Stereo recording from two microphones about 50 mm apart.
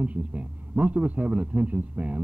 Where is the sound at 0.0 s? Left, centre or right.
Right.